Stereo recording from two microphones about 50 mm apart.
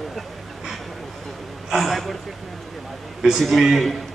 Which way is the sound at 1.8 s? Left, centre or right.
Centre.